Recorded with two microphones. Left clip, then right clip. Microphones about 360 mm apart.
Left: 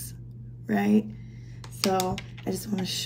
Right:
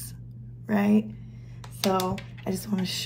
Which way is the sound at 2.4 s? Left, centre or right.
Centre.